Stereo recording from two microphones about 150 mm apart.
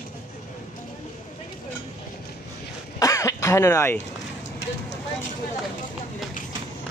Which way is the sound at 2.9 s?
20° left (ahead or behind).